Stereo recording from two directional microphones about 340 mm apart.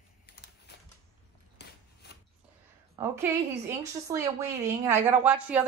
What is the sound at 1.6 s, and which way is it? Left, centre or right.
Scissors, left.